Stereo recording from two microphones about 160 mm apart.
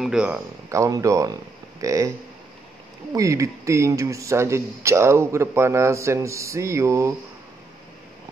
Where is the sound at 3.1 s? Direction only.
20° right (ahead or behind).